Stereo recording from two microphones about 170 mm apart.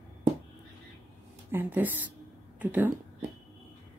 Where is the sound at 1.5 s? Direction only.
10° right (ahead or behind).